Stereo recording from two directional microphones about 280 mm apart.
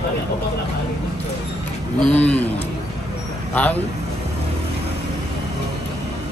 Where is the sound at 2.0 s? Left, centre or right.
Centre.